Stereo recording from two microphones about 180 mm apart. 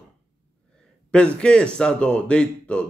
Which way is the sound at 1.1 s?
5° left (ahead or behind).